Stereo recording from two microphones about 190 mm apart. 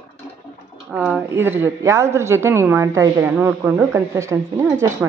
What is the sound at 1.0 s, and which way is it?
A woman's voice, 10° right (ahead or behind).